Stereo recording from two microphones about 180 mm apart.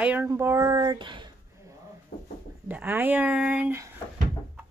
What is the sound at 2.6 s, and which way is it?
A woman's voice, 10° right (ahead or behind).